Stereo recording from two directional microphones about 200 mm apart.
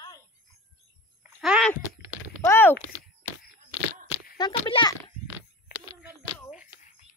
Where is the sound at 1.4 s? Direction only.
5° right (ahead or behind).